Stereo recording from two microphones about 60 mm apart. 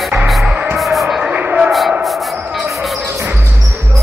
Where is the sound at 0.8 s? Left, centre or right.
Centre.